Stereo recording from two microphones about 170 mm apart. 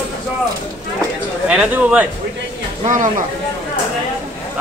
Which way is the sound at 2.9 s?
50° right (ahead or behind).